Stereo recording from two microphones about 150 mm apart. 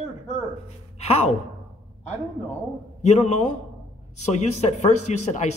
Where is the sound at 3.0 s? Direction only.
50° left (ahead or behind).